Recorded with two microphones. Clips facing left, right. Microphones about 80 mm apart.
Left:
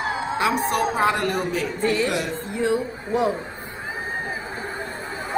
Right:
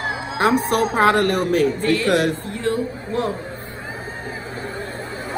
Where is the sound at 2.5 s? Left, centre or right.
Centre.